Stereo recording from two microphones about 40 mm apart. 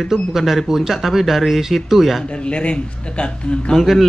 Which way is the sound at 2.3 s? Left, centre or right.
Left.